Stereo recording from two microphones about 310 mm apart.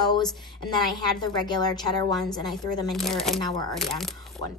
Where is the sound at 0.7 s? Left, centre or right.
Centre.